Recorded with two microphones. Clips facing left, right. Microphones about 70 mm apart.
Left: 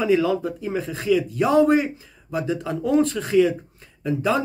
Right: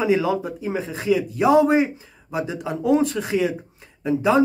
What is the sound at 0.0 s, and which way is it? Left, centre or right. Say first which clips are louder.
Speech: even; centre.